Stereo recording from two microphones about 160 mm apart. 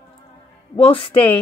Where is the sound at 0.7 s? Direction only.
35° left (ahead or behind).